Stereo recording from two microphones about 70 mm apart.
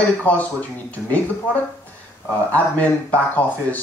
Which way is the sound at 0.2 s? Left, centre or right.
Left.